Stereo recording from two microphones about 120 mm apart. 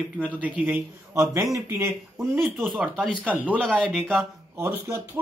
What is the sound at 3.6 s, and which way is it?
Speech, 10° left (ahead or behind).